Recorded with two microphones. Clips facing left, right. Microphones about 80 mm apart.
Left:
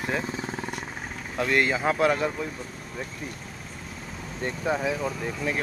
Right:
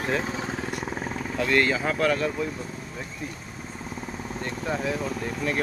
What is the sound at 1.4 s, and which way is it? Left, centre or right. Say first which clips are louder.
Speech: even; centre.